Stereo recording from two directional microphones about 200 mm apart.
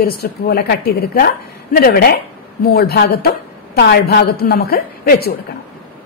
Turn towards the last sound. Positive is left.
turn(degrees=50)  # may be behind; listen again after turning